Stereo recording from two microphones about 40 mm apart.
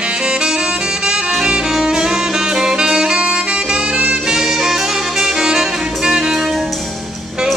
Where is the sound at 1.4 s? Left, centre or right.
Right.